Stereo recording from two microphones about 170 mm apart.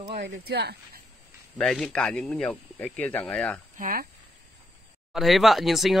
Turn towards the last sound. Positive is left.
turn(degrees=0)  # may be behind; listen again after turning